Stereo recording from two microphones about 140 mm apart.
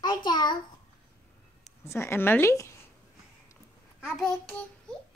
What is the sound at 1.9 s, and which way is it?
Speech, 20° left (ahead or behind).